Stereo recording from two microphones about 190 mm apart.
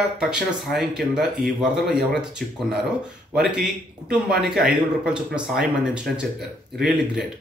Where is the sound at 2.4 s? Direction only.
50° right (ahead or behind).